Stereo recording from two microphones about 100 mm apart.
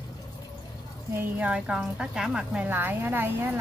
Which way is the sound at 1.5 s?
10° right (ahead or behind).